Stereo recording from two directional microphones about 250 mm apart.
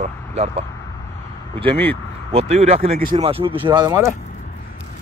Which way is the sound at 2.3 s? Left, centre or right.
Right.